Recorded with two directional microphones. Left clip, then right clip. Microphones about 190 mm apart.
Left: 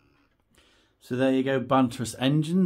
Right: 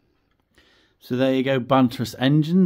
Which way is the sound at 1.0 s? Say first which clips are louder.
Right 4 dB; 45° right (ahead or behind).